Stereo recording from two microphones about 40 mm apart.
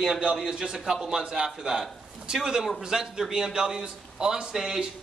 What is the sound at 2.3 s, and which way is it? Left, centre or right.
A man's voice, centre.